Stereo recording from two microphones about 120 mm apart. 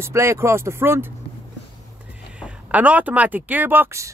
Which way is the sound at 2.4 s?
10° right (ahead or behind).